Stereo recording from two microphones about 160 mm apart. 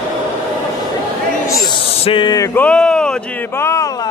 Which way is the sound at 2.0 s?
30° left (ahead or behind).